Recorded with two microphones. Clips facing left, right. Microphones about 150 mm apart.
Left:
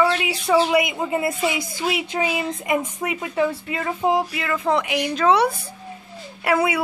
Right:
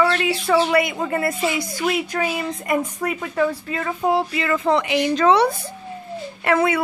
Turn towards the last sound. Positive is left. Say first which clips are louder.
# right 2 dB
turn(degrees=5)  # may be behind; listen again after turning